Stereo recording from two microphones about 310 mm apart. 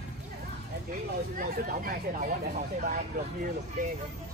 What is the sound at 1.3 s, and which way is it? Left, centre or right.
Speech, right.